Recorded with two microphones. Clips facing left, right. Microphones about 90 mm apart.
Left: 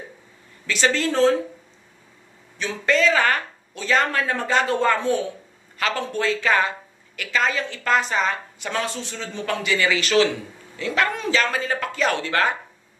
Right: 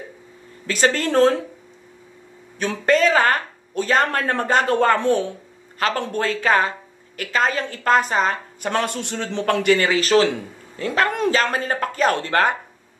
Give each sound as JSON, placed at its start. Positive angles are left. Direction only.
{"t": 0.7, "sound": "a woman's voice", "side_deg": -45}
{"t": 2.6, "sound": "a woman's voice", "side_deg": -45}
{"t": 5.8, "sound": "a woman's voice", "side_deg": -45}